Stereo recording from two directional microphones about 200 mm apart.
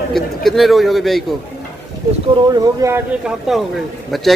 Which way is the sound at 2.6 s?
15° right (ahead or behind).